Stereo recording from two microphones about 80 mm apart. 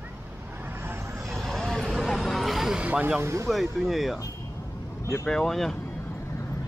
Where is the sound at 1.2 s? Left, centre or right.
Centre.